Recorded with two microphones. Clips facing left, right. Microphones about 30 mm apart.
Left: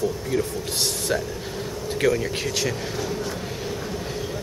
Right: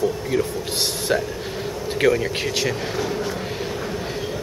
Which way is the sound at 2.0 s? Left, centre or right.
Centre.